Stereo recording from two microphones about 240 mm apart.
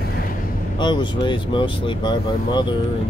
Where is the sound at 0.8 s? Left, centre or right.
Centre.